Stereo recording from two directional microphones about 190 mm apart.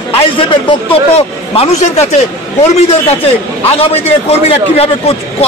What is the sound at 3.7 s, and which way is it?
A man's voice, 30° left (ahead or behind).